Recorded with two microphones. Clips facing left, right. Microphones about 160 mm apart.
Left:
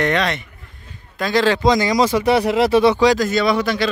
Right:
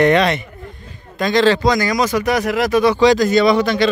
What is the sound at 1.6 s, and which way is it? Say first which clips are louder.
Speech: left 1 dB; 20° left (ahead or behind).